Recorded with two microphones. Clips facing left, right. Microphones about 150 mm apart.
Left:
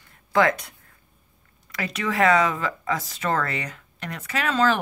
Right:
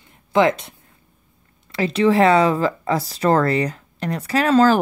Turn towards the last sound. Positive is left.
turn(degrees=-35)  # may be behind; listen again after turning